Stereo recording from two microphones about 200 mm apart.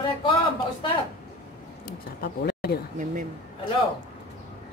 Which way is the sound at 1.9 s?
50° left (ahead or behind).